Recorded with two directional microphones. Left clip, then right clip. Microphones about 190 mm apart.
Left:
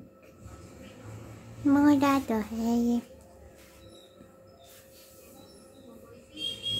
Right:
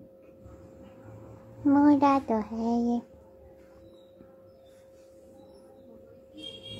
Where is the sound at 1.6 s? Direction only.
Centre (ahead or behind).